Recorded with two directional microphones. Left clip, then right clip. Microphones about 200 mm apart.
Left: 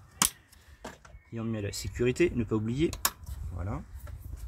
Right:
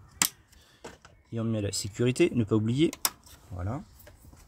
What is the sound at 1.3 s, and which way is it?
Speech, 50° right (ahead or behind).